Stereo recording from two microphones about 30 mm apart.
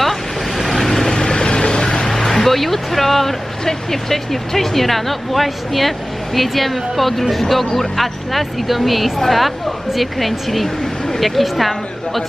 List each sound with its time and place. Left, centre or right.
0.7 s vehicle: centre
1.1 s vehicle: left
2.1 s a sound: centre
2.5 s speech: centre